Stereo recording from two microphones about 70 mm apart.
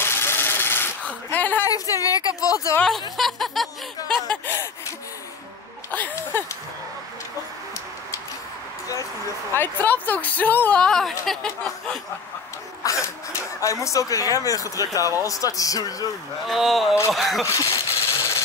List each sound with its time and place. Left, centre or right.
0.0 s a sound: left
1.7 s a woman's voice: left
3.2 s snicker: centre
4.5 s gasp: left
5.9 s speech: left
9.5 s speech: left
10.8 s speech: centre
11.2 s snicker: centre
12.8 s a woman's voice: left
16.4 s snicker: centre
17.5 s a sound: left